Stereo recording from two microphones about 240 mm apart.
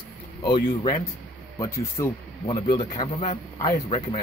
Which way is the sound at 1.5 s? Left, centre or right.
Centre.